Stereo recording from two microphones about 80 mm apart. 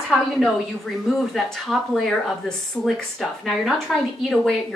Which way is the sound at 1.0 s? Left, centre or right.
Centre.